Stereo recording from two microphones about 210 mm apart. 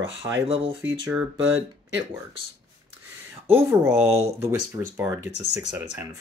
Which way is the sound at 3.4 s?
10° right (ahead or behind).